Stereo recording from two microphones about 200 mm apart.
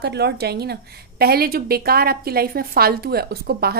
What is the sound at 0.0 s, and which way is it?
A woman's voice, 55° right (ahead or behind).